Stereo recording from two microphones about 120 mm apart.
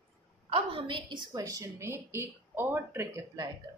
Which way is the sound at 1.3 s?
30° right (ahead or behind).